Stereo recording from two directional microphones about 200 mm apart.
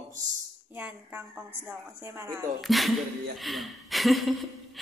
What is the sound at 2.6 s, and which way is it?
A woman's voice, centre (ahead or behind).